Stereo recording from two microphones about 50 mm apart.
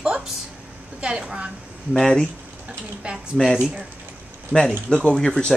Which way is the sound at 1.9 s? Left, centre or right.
Centre.